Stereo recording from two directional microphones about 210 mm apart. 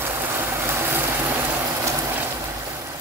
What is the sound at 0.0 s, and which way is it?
Vehicle, 10° right (ahead or behind).